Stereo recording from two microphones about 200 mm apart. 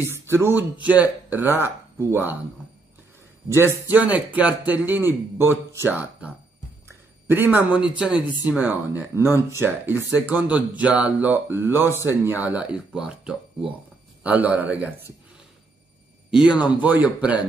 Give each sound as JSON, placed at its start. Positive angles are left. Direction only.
{"t": 0.0, "sound": "speech", "side_deg": -15}
{"t": 3.4, "sound": "speech", "side_deg": -10}
{"t": 6.9, "sound": "a sound", "side_deg": -10}
{"t": 8.0, "sound": "speech", "side_deg": -5}
{"t": 16.3, "sound": "speech", "side_deg": -5}